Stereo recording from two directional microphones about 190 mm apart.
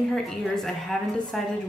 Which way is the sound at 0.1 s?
Centre (ahead or behind).